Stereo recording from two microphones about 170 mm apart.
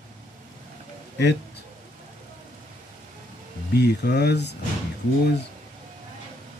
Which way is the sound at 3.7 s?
75° left (ahead or behind).